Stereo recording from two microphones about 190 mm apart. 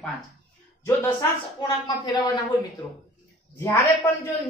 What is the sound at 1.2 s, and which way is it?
A woman's voice, 20° left (ahead or behind).